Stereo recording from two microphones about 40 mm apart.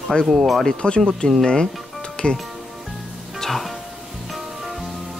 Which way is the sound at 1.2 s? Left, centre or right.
Left.